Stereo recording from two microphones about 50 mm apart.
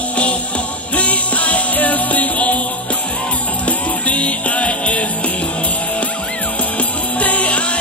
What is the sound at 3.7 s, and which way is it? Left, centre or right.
Music, left.